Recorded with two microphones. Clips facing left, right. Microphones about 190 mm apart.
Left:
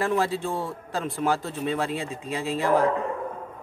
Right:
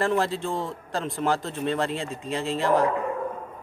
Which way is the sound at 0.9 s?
Centre (ahead or behind).